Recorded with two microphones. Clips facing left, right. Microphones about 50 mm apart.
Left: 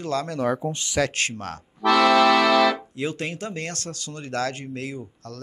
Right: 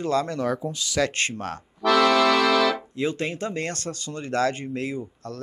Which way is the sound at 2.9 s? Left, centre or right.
Centre.